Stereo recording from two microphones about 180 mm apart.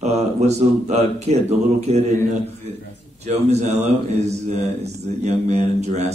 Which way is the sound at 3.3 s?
40° right (ahead or behind).